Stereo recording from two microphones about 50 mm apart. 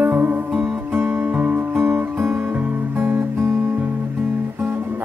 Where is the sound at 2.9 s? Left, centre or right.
Right.